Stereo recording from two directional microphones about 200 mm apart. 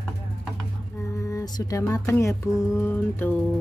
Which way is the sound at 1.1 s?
15° left (ahead or behind).